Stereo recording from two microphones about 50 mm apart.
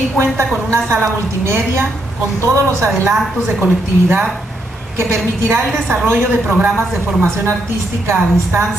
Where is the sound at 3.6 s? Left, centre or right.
Right.